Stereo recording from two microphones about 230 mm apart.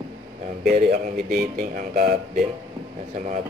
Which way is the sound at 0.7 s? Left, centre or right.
Right.